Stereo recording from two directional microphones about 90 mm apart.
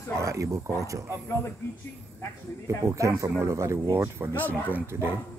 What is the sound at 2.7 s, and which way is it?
Speech, 35° right (ahead or behind).